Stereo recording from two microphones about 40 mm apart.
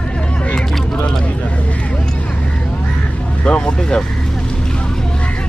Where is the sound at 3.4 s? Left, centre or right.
Left.